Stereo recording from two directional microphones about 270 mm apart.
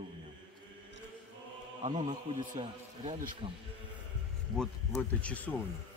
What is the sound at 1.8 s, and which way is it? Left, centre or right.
A man's voice, centre.